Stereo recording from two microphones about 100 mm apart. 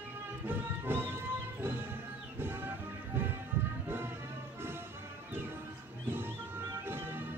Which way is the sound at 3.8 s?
20° right (ahead or behind).